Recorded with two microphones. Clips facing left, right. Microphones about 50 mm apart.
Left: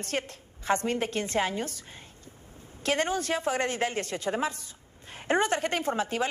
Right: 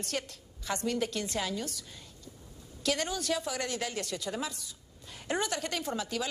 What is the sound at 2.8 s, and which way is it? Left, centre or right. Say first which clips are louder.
A woman's voice: left 4 dB; left.